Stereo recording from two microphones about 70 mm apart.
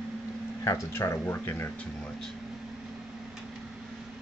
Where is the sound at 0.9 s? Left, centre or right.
Left.